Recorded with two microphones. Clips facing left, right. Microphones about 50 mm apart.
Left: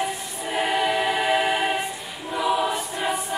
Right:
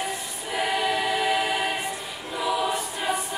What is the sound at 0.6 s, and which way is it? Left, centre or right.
Choir, centre.